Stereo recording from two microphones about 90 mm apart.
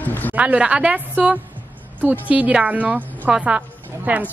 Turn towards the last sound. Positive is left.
turn(degrees=-15)  # may be behind; listen again after turning